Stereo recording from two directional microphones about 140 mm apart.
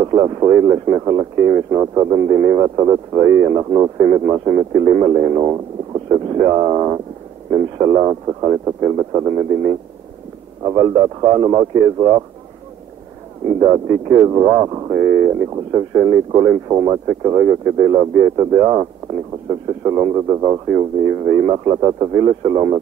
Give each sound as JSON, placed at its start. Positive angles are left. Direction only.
{"t": 0.0, "sound": "a man's voice", "side_deg": -30}
{"t": 13.6, "sound": "speech", "side_deg": -30}